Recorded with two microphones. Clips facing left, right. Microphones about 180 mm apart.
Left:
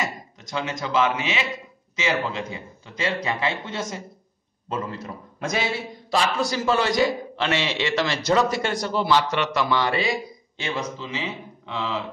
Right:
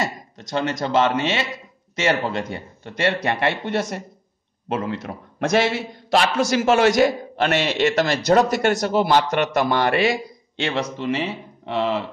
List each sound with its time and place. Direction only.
0.4 s a man's voice: 70° right (ahead or behind)
7.1 s a man's voice: 45° right (ahead or behind)
8.5 s a man's voice: 65° right (ahead or behind)
9.0 s a man's voice: 50° right (ahead or behind); by 12.1 s 65° right (ahead or behind)